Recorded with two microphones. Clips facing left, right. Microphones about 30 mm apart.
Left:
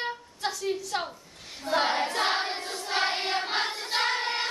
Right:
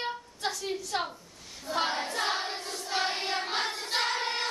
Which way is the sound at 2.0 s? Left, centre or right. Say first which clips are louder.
Left 4 dB; left.